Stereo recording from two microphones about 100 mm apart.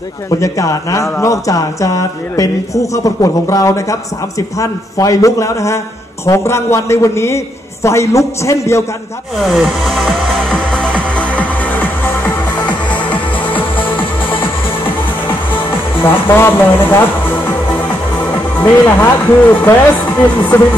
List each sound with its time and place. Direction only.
0.4 s a man's voice: 35° left (ahead or behind)
9.4 s music: centre (ahead or behind); by 13.8 s 15° left (ahead or behind)
16.1 s a man's voice: 20° left (ahead or behind)
18.2 s a man's voice: 20° left (ahead or behind)